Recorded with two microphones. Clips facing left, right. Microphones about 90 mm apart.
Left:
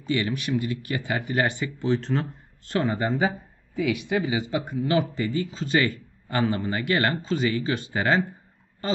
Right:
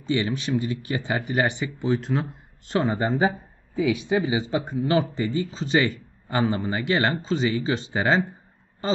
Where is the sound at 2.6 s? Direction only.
20° right (ahead or behind).